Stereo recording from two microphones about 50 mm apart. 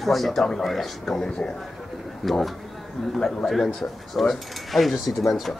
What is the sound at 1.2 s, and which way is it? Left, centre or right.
Speech, centre.